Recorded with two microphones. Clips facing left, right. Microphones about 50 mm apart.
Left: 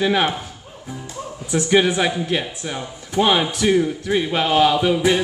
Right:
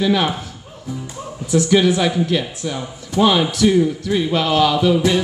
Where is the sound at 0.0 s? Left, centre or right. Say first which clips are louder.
Right 1 dB; left.